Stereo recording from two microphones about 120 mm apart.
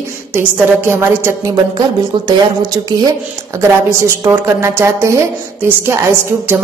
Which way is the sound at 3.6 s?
25° right (ahead or behind).